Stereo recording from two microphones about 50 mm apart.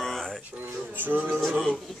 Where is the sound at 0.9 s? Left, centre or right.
Right.